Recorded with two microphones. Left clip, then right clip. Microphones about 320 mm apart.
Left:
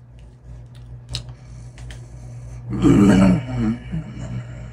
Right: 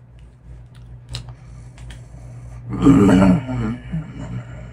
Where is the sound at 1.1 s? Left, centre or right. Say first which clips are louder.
Left 3 dB; centre.